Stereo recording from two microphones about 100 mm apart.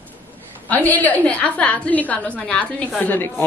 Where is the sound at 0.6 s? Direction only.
15° left (ahead or behind).